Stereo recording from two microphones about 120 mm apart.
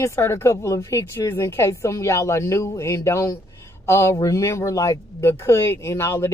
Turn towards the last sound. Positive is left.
turn(degrees=20)  # may be behind; listen again after turning